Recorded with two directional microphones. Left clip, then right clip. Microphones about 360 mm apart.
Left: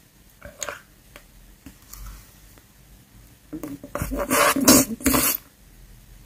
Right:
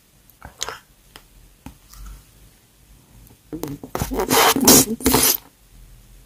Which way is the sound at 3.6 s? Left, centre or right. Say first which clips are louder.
Right 4 dB; centre.